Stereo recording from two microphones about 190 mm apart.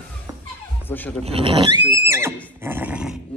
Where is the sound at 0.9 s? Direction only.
10° left (ahead or behind).